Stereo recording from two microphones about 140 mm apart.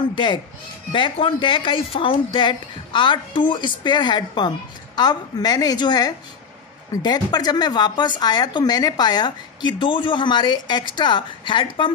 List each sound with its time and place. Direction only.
0.1 s a woman's voice: 35° left (ahead or behind)